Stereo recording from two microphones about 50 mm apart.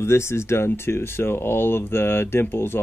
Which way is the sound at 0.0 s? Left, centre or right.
Left.